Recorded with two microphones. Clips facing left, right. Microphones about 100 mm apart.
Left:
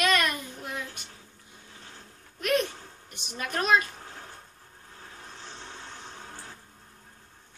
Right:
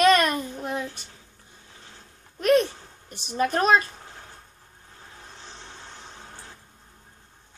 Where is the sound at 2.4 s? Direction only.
35° right (ahead or behind).